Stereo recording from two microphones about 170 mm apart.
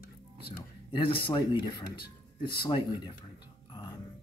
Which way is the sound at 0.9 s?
30° left (ahead or behind).